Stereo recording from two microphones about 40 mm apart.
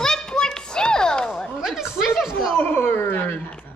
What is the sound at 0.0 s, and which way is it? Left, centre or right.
Children playing, centre.